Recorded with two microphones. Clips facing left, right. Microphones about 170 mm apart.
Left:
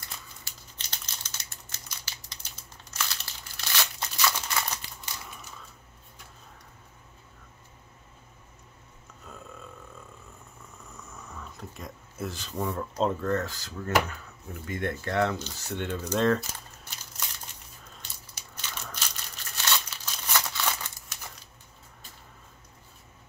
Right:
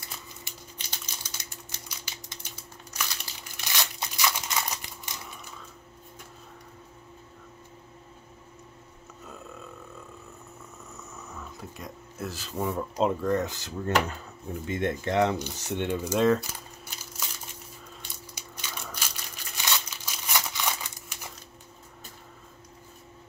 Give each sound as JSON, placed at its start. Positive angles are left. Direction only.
{"t": 0.4, "sound": "typing", "side_deg": -15}
{"t": 2.9, "sound": "crumpling", "side_deg": -15}
{"t": 11.2, "sound": "a sound", "side_deg": 0}
{"t": 12.6, "sound": "speech", "side_deg": -10}
{"t": 18.3, "sound": "crumpling", "side_deg": -10}